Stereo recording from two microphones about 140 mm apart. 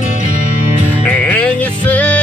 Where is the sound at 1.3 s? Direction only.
10° left (ahead or behind).